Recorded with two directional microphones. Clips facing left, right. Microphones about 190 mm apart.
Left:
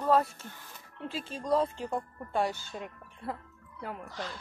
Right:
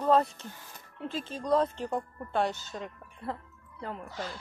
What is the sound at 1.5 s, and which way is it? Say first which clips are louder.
Speech: right 1 dB; 5° left (ahead or behind).